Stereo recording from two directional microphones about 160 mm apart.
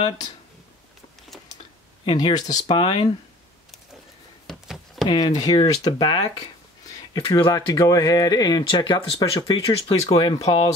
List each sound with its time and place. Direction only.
2.0 s speech: 30° left (ahead or behind)
4.5 s a sound: centre (ahead or behind)
5.0 s speech: 25° left (ahead or behind)